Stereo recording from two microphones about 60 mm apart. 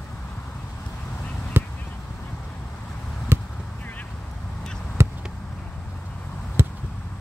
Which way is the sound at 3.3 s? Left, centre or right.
Right.